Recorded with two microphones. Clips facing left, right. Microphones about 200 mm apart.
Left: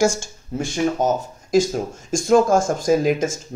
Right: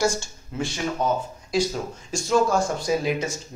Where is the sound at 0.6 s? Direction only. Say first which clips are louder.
Left 6 dB; 45° left (ahead or behind).